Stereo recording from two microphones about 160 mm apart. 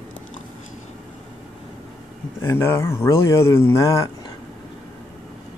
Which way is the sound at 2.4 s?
15° left (ahead or behind).